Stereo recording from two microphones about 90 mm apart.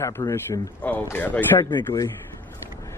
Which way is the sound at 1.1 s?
25° left (ahead or behind).